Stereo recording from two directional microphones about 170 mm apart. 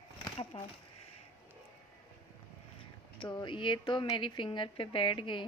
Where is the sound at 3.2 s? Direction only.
30° left (ahead or behind).